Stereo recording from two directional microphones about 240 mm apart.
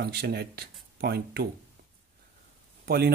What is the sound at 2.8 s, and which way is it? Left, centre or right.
Speech, right.